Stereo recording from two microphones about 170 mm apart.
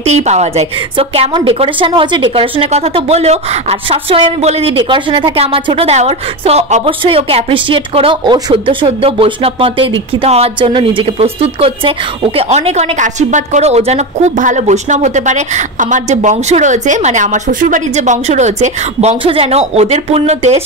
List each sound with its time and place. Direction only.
0.0 s a woman's voice: 40° right (ahead or behind)